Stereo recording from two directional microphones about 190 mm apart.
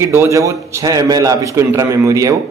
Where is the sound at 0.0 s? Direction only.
15° right (ahead or behind).